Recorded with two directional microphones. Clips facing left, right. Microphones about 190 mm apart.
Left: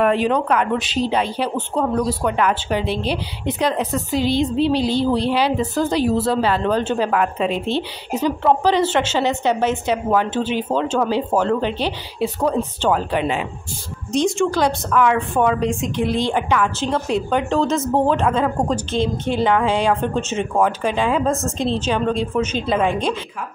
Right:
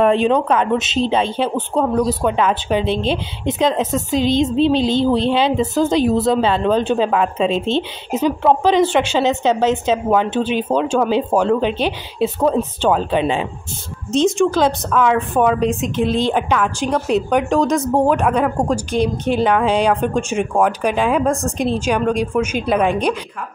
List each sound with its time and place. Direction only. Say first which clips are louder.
0.0 s a woman's voice: right 3 dB; 25° right (ahead or behind)